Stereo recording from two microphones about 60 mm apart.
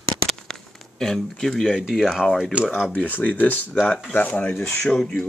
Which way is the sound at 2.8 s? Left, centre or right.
Centre.